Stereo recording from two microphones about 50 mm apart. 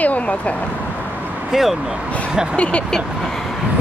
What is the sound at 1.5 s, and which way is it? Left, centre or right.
Speech, centre.